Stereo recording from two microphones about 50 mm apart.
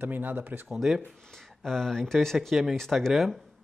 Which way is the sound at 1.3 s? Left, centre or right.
Centre.